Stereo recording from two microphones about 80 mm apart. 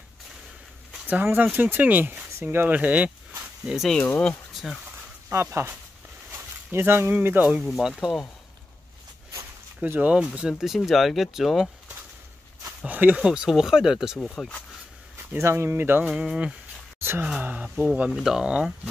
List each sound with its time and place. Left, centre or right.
1.2 s speech: right
3.6 s speech: centre
5.3 s speech: right
7.7 s speech: centre
9.8 s speech: right
10.6 s speech: centre
12.6 s speech: right; by 14.5 s centre
15.3 s speech: right
16.0 s speech: centre
17.2 s speech: centre
18.1 s speech: centre